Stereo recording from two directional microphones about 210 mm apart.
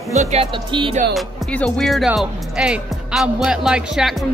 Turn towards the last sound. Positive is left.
turn(degrees=0)  # may be behind; listen again after turning